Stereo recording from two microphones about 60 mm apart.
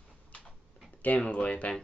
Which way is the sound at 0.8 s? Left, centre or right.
Left.